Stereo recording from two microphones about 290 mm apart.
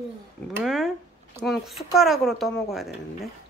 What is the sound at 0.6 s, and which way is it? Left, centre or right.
A woman's voice, centre.